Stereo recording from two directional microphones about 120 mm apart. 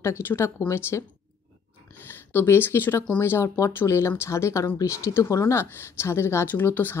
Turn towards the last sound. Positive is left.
turn(degrees=15)  # may be behind; listen again after turning